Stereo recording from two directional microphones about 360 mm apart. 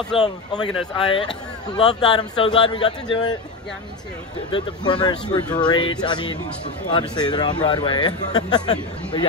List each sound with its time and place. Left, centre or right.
0.1 s speech: centre
0.9 s speech: centre
4.5 s speech: centre